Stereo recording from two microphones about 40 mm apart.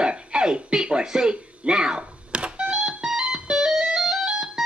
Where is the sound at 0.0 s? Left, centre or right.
Right.